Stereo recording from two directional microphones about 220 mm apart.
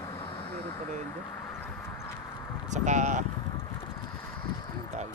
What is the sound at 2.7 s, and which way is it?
Speech, 35° right (ahead or behind).